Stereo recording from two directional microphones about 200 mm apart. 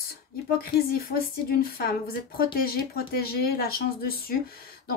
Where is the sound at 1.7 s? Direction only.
50° left (ahead or behind).